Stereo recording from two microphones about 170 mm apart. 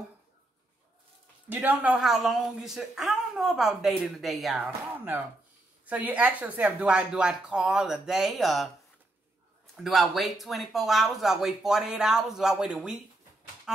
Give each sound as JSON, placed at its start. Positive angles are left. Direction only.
{"t": 1.5, "sound": "a woman's voice", "side_deg": -10}
{"t": 5.9, "sound": "a woman's voice", "side_deg": -10}
{"t": 9.8, "sound": "a woman's voice", "side_deg": 0}